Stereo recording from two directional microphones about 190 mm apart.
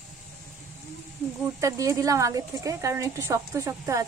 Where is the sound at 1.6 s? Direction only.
15° right (ahead or behind).